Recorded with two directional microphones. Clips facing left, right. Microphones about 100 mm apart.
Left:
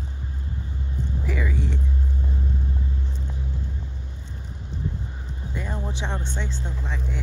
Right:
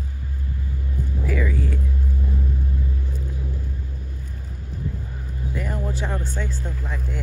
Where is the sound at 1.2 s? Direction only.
20° left (ahead or behind).